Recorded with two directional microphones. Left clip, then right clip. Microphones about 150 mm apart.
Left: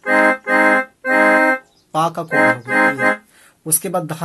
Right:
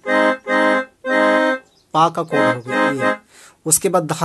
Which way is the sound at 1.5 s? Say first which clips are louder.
Right 2 dB; 30° right (ahead or behind).